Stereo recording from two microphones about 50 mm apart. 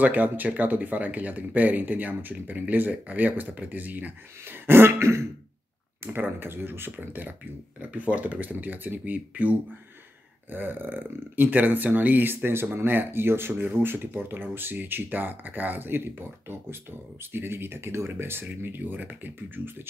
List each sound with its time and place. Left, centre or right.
0.0 s speech: right
6.1 s speech: right
7.8 s speech: right
10.5 s speech: right